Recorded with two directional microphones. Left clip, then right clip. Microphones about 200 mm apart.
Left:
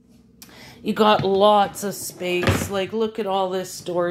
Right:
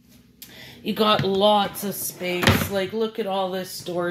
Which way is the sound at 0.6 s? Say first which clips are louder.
Left 4 dB; 20° left (ahead or behind).